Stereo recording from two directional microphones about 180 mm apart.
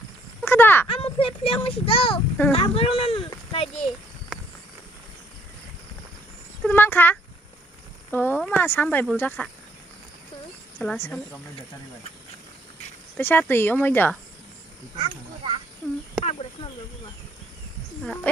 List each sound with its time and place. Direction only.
0.4 s a sound: 10° left (ahead or behind)
0.8 s a child's voice: 30° left (ahead or behind)
4.3 s walk: centre (ahead or behind)
6.6 s speech: 10° left (ahead or behind)
10.8 s speech: 10° left (ahead or behind)
13.2 s speech: 10° left (ahead or behind)
15.0 s speech: 25° right (ahead or behind)
18.0 s speech: 5° left (ahead or behind)